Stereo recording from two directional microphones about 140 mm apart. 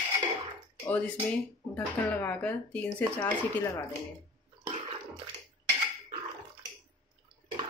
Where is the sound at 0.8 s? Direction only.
10° left (ahead or behind).